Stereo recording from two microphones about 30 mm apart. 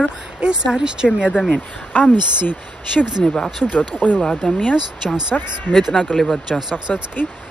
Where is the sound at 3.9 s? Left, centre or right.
Left.